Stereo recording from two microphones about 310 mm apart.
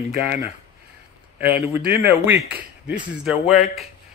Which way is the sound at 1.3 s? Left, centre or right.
Centre.